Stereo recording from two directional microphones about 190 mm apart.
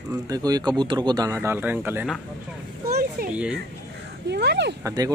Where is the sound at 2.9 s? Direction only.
50° right (ahead or behind).